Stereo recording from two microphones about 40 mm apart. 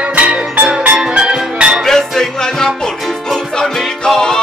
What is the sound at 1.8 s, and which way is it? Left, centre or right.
Music, centre.